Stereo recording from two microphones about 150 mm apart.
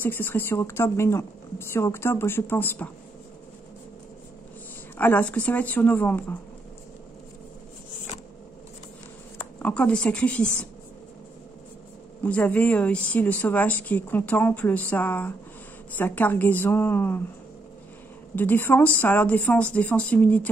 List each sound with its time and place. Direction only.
0.0 s a woman's voice: 15° left (ahead or behind)
4.9 s a woman's voice: 10° left (ahead or behind)
9.4 s speech: 10° left (ahead or behind)
12.2 s a woman's voice: 10° left (ahead or behind)
18.3 s a woman's voice: 10° left (ahead or behind)